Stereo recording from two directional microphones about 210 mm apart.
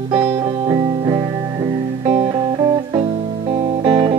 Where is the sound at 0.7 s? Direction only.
20° right (ahead or behind).